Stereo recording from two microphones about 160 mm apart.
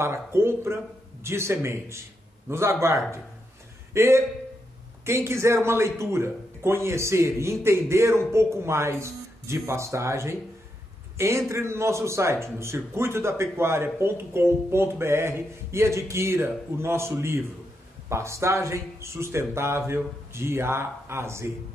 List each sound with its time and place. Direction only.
0.0 s a man's voice: 15° right (ahead or behind)